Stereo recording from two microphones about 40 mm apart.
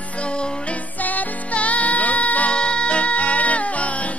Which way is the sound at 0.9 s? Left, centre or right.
Left.